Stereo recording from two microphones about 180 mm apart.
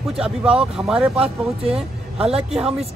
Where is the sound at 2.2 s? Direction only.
35° right (ahead or behind).